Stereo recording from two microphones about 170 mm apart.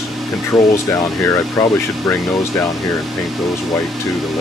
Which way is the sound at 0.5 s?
20° left (ahead or behind).